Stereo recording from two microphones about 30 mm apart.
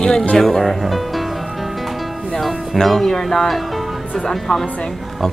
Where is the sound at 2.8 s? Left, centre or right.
Centre.